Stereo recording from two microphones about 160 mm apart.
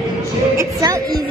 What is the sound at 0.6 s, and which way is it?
Music, 20° right (ahead or behind).